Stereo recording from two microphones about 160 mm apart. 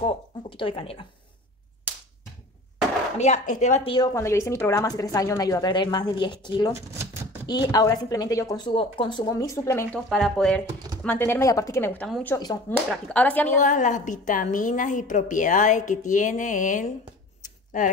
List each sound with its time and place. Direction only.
0.0 s speech: 35° left (ahead or behind)
3.2 s a woman's voice: 50° left (ahead or behind)
3.8 s speech: 30° left (ahead or behind)
4.1 s speech: 15° left (ahead or behind)
9.9 s speech: centre (ahead or behind)
11.1 s a woman's voice: 15° left (ahead or behind)
13.6 s a woman's voice: 50° left (ahead or behind)